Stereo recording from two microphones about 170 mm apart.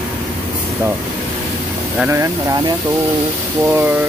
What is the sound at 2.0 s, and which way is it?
Speech, 15° right (ahead or behind).